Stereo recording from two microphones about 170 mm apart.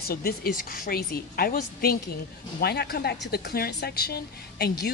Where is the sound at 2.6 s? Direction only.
70° left (ahead or behind).